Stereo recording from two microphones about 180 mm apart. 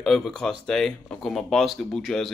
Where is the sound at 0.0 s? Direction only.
Centre (ahead or behind).